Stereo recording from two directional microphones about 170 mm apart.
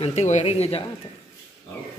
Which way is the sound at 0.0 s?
40° left (ahead or behind).